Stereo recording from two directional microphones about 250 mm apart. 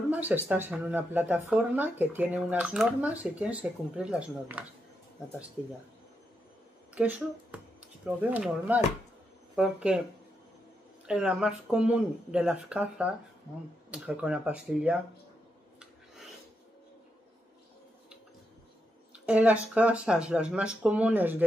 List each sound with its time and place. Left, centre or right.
0.1 s speech: centre
7.0 s speech: centre
11.1 s speech: centre
19.1 s speech: centre